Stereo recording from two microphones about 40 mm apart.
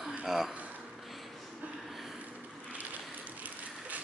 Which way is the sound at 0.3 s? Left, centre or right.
Centre.